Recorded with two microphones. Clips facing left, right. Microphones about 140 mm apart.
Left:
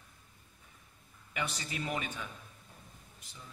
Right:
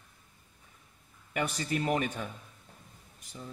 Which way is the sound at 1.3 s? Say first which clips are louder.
Right 7 dB; 45° right (ahead or behind).